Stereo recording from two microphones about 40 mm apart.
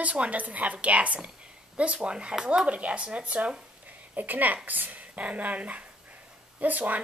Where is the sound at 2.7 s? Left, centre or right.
Right.